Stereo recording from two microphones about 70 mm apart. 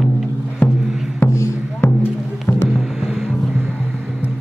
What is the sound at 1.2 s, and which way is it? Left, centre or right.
Music, left.